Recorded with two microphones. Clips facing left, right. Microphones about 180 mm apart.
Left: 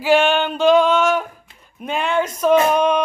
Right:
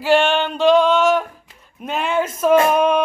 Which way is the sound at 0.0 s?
Centre (ahead or behind).